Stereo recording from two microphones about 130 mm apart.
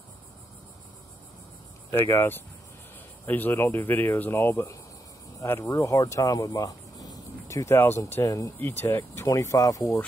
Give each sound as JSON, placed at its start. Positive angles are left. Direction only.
{"t": 1.9, "sound": "speech", "side_deg": 20}